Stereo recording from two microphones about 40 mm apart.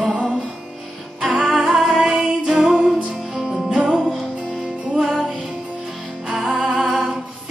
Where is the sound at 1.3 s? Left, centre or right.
Centre.